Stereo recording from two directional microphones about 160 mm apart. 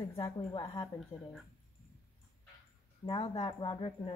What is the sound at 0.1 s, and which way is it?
Speech, 25° left (ahead or behind).